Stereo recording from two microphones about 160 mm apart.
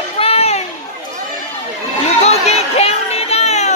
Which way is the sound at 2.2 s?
40° left (ahead or behind).